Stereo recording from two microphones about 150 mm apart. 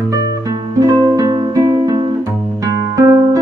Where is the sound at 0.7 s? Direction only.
20° right (ahead or behind).